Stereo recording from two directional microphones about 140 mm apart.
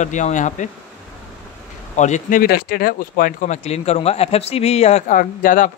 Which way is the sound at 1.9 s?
60° left (ahead or behind).